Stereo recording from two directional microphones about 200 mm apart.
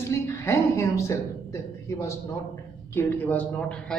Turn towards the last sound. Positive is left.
turn(degrees=5)  # may be behind; listen again after turning